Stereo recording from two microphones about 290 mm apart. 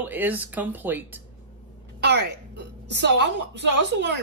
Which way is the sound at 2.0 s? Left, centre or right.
Right.